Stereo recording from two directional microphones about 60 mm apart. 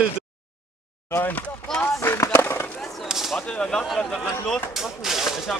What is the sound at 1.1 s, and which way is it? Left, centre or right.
Speech, left.